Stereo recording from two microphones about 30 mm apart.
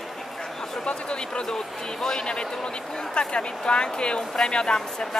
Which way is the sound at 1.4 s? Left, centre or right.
Centre.